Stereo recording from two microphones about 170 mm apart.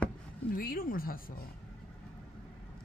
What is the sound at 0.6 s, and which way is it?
Speech, 55° left (ahead or behind).